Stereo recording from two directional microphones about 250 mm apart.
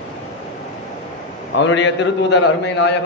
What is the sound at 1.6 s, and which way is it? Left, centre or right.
A man's voice, left.